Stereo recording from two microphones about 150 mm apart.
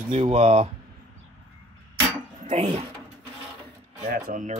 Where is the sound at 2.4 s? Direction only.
50° right (ahead or behind).